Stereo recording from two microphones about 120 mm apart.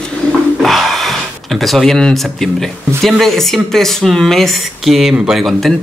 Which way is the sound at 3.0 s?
Centre (ahead or behind).